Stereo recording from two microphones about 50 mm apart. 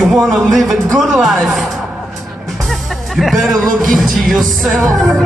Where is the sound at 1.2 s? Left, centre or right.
Centre.